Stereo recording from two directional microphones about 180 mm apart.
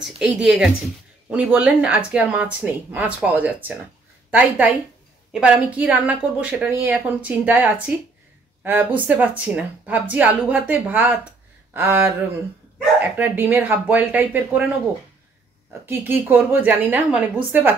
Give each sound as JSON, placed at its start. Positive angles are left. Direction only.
{"t": 0.0, "sound": "a woman's voice", "side_deg": -5}
{"t": 13.2, "sound": "a woman's voice", "side_deg": -10}
{"t": 15.8, "sound": "a woman's voice", "side_deg": -10}